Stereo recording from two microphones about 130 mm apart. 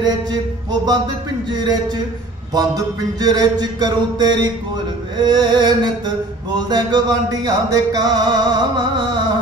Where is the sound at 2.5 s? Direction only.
30° right (ahead or behind).